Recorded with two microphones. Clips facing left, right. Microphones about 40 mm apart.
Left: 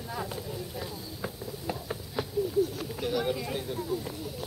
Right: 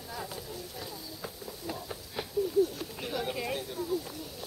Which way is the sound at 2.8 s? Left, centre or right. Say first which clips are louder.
Left 5 dB; centre.